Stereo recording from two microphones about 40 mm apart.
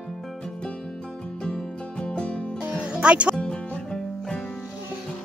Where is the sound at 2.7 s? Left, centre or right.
Right.